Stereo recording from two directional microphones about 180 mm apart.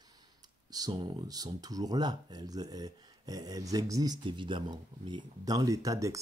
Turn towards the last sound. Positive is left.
turn(degrees=-20)  # may be behind; listen again after turning